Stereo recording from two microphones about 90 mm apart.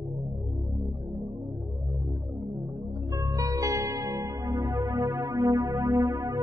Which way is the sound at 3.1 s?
40° right (ahead or behind).